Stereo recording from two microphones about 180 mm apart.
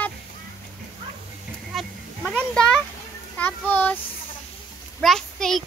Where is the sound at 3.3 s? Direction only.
10° left (ahead or behind).